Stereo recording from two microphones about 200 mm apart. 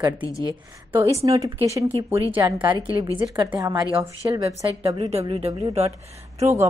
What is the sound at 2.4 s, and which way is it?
Speech, 20° right (ahead or behind).